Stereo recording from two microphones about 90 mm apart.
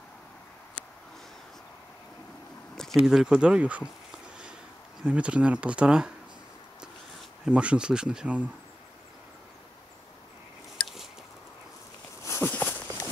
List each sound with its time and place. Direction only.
3.0 s speech: 5° right (ahead or behind)
5.0 s speech: 10° right (ahead or behind)
7.4 s speech: 10° right (ahead or behind)
10.8 s biting: centre (ahead or behind)
12.2 s walk: 30° left (ahead or behind)